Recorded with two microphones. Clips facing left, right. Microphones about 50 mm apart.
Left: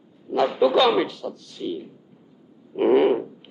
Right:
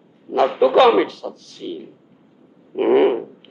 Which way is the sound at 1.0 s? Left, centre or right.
Right.